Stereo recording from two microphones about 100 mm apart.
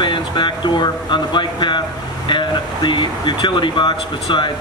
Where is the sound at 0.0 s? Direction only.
50° left (ahead or behind).